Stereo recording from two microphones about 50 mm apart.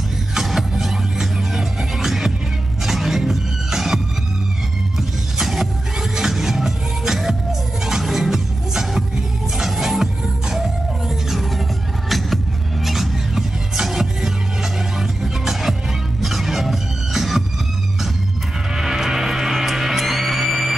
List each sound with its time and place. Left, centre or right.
0.3 s music: centre
18.8 s music: centre